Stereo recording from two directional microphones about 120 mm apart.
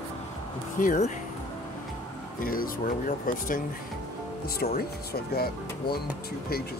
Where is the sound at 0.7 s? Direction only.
90° left.